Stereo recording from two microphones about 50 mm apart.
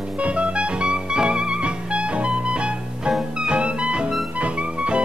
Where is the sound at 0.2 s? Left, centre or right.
Right.